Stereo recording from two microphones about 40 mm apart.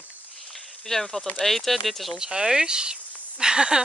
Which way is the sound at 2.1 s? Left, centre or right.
Centre.